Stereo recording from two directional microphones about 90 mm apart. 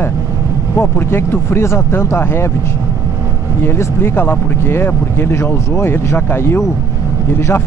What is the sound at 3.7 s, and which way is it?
Speech, 25° left (ahead or behind).